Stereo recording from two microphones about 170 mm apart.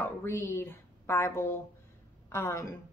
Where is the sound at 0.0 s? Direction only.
15° left (ahead or behind).